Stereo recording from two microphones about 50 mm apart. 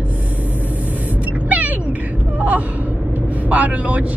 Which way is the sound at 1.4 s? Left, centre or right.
Right.